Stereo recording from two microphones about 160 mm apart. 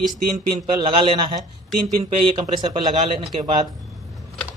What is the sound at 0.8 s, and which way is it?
Speech, 30° right (ahead or behind).